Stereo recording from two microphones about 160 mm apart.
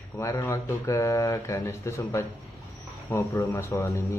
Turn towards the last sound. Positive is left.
turn(degrees=15)  # may be behind; listen again after turning